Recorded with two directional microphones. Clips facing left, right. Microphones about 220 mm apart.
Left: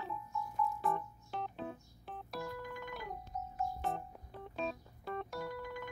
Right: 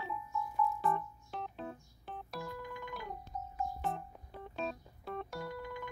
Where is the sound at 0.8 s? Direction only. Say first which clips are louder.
Right 2 dB; centre (ahead or behind).